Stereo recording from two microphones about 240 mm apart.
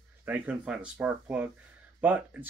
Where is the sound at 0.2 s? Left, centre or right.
Centre.